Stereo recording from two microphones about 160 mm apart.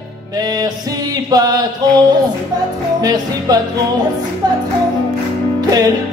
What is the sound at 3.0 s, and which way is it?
Music, 25° right (ahead or behind).